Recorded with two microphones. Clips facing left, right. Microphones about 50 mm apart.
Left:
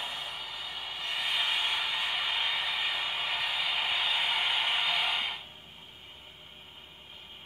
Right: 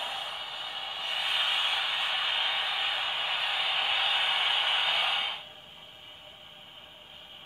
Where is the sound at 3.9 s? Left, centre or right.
Right.